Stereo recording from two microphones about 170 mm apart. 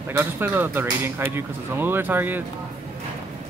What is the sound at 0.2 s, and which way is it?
Speech, 10° right (ahead or behind).